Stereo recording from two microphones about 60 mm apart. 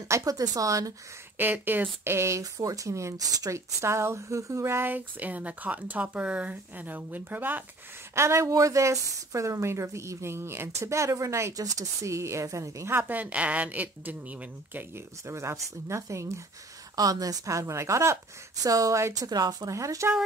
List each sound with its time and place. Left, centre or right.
0.2 s a woman's voice: right
1.4 s speech: right
2.1 s speech: right
4.9 s speech: right
8.1 s speech: right
11.5 s speech: right
12.9 s speech: right
15.2 s speech: right
16.9 s speech: right
18.6 s a woman's voice: right
19.1 s a woman's voice: right